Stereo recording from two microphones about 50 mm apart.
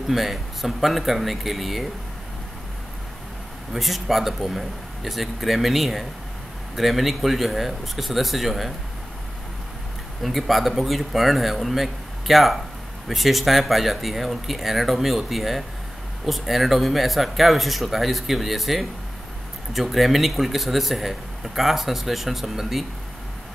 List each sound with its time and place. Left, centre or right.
0.1 s speech: centre
3.7 s speech: centre
10.2 s speech: centre